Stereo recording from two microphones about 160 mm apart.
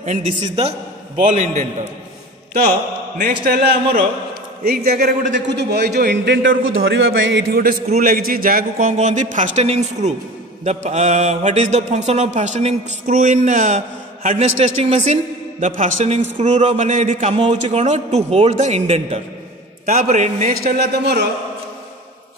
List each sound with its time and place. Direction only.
0.0 s a man's voice: 45° right (ahead or behind)
3.2 s a man's voice: 70° right (ahead or behind)
5.5 s a man's voice: 90° right
7.3 s a man's voice: 70° right (ahead or behind); by 20.7 s 50° right (ahead or behind)
20.7 s a man's voice: 90° right